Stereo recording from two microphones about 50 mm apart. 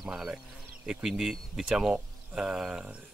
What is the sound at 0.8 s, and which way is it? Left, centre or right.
Speech, centre.